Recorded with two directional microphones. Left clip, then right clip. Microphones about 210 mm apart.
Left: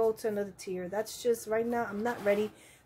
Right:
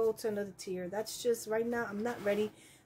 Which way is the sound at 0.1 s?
Centre (ahead or behind).